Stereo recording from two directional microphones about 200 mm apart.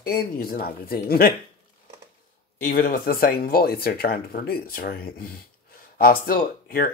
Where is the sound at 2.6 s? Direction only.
45° left (ahead or behind).